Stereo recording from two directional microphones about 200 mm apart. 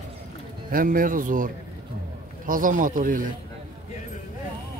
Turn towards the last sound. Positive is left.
turn(degrees=-45)  # may be behind; listen again after turning